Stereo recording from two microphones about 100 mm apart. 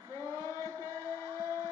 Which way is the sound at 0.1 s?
30° left (ahead or behind).